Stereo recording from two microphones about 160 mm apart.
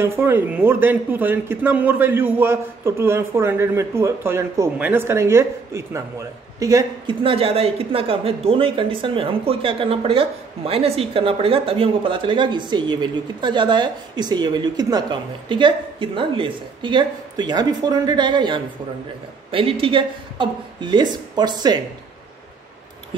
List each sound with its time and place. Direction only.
0.0 s speech: 15° right (ahead or behind)
7.2 s speech: 35° right (ahead or behind)